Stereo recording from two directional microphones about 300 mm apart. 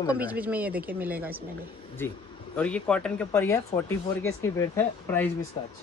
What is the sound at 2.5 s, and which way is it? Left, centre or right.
Speech, centre.